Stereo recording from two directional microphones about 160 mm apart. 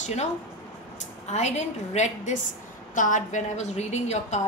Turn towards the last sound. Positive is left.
turn(degrees=45)  # may be behind; listen again after turning